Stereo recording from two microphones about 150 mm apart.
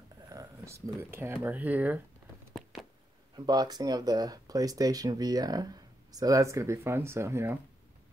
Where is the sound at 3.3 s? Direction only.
25° right (ahead or behind).